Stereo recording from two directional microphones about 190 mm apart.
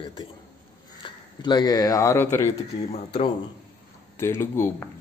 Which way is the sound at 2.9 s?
35° left (ahead or behind).